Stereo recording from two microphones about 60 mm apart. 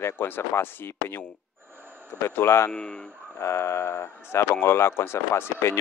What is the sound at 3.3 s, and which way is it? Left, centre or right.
Speech, left.